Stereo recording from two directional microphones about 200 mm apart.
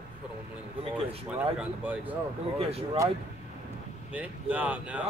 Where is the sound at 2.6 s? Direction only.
30° right (ahead or behind).